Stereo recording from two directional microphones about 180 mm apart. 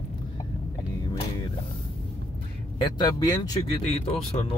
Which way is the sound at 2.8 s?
20° left (ahead or behind).